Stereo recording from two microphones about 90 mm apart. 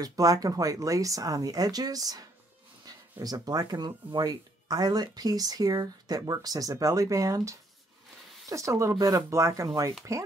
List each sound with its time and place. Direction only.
0.0 s speech: 40° right (ahead or behind)